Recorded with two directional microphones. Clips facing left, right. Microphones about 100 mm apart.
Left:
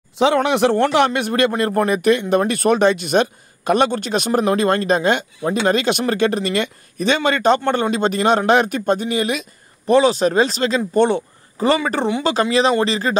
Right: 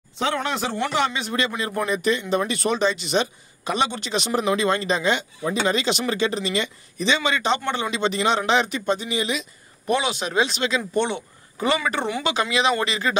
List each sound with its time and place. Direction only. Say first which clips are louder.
0.2 s a man's voice: left 9 dB; 80° left; by 9.5 s 55° left (ahead or behind)
9.8 s speech: left 9 dB; 35° left (ahead or behind)